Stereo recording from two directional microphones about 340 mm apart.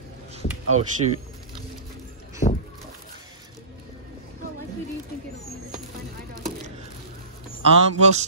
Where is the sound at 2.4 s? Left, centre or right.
Left.